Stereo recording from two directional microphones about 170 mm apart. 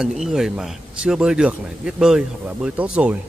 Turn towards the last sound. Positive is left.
turn(degrees=-10)  # may be behind; listen again after turning